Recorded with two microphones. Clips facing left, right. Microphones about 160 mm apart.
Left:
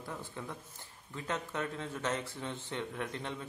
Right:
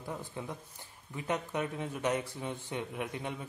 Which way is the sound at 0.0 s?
15° right (ahead or behind).